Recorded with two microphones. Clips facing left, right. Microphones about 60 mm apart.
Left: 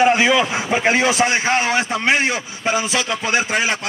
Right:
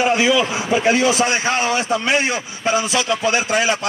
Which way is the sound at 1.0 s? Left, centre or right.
Left.